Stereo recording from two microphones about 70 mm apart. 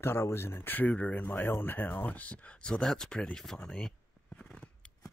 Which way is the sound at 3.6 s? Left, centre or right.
Centre.